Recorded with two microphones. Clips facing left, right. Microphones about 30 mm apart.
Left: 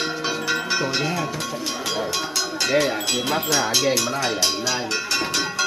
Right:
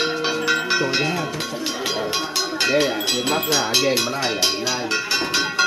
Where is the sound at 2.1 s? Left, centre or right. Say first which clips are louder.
Right 2 dB; right.